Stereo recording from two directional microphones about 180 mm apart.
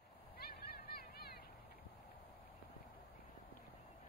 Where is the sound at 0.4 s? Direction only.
60° left (ahead or behind).